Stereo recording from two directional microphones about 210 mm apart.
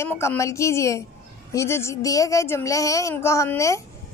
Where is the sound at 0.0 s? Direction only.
10° left (ahead or behind).